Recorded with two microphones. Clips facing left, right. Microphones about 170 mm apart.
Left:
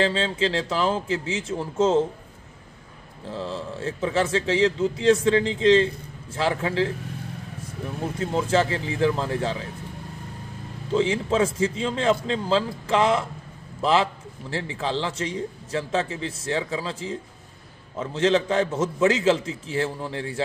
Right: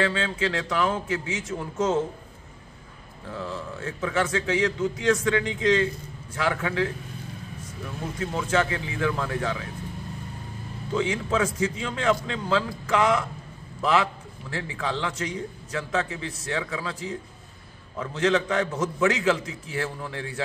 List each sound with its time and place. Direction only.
0.0 s a man's voice: 30° left (ahead or behind)
3.3 s a man's voice: 30° left (ahead or behind)
8.0 s a man's voice: 30° left (ahead or behind)
10.9 s a man's voice: 30° left (ahead or behind)